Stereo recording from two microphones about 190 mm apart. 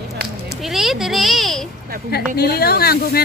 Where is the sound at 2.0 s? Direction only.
55° left (ahead or behind).